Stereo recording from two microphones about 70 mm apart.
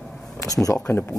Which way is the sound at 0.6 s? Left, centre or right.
Left.